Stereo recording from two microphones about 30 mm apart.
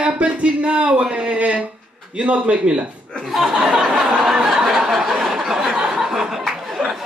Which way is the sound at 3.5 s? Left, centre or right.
Right.